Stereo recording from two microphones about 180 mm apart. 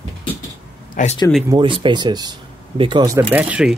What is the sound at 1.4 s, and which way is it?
Speech, 25° right (ahead or behind).